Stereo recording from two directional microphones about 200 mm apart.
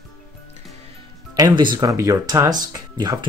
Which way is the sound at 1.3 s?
20° right (ahead or behind).